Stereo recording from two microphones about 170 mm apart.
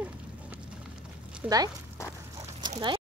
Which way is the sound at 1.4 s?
20° right (ahead or behind).